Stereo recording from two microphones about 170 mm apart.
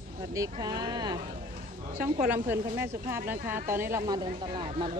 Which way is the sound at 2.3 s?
15° right (ahead or behind).